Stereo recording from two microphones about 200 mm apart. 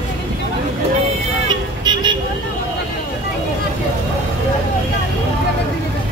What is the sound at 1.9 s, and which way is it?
Vehicle, 20° right (ahead or behind).